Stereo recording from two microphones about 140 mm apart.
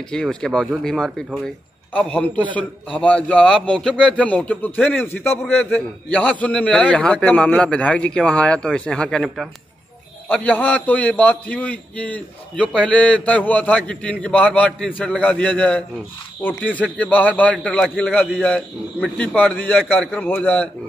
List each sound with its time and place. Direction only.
0.1 s a man's voice: 5° left (ahead or behind)
2.3 s a man's voice: 35° right (ahead or behind)
2.9 s a man's voice: 10° left (ahead or behind)